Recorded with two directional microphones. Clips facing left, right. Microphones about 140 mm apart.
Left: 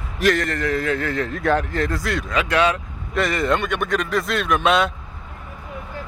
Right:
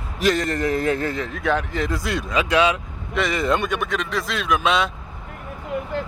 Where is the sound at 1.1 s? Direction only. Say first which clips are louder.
Left 3 dB; centre (ahead or behind).